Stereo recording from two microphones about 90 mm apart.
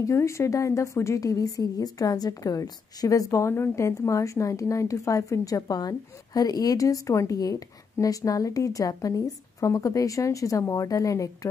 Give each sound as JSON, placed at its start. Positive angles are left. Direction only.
{"t": 0.0, "sound": "a woman's voice", "side_deg": 35}